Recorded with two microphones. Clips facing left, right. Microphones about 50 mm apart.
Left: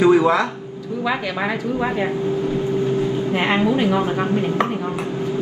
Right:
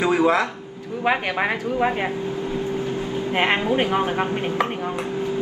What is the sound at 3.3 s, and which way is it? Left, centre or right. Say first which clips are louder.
Speech: right 1 dB; right.